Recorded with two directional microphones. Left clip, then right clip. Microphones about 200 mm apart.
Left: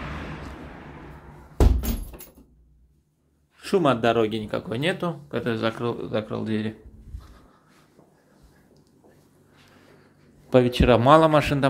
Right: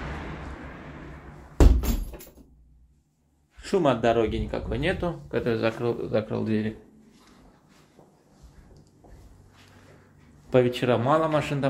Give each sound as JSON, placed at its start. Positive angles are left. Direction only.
{"t": 3.5, "sound": "speech", "side_deg": 30}
{"t": 5.3, "sound": "speech", "side_deg": 10}
{"t": 10.5, "sound": "speech", "side_deg": 25}